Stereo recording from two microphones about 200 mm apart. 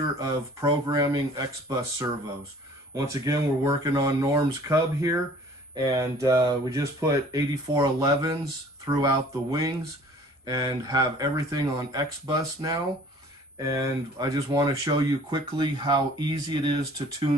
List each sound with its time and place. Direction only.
0.2 s speech: 20° right (ahead or behind)